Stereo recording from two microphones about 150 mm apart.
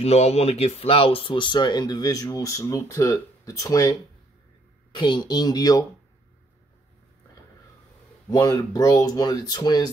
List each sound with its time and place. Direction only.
0.0 s speech: 45° left (ahead or behind); by 3.9 s 25° left (ahead or behind)
4.9 s speech: 30° left (ahead or behind)
8.3 s speech: 25° left (ahead or behind)